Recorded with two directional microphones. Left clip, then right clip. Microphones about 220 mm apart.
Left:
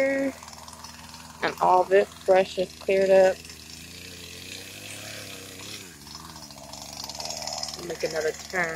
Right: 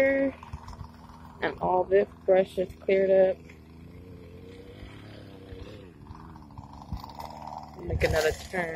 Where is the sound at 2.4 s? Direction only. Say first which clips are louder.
Left 2 dB; 40° left (ahead or behind).